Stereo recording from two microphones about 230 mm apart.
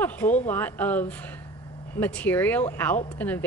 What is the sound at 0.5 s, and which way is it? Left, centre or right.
Speech, centre.